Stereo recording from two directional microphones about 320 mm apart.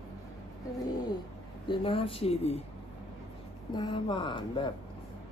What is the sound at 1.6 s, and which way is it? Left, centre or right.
Speech, centre.